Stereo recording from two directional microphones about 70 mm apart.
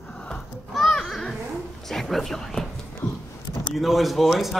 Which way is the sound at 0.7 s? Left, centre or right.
Centre.